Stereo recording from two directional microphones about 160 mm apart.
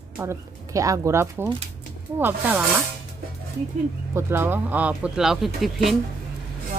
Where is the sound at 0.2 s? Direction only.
20° right (ahead or behind).